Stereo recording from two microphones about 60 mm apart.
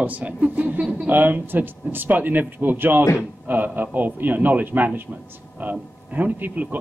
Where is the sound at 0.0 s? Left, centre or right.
Right.